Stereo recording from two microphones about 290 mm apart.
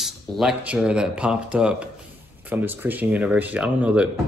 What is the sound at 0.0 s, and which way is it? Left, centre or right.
Speech, centre.